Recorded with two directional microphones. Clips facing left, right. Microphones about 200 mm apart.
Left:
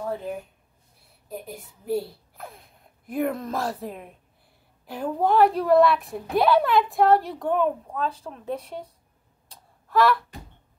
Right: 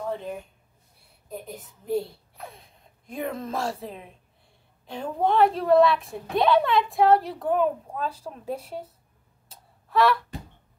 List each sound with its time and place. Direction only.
0.1 s a woman's voice: 5° left (ahead or behind)
9.5 s tick-tock: centre (ahead or behind)